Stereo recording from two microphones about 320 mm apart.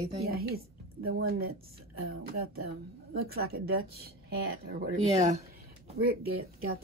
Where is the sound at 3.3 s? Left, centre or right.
Right.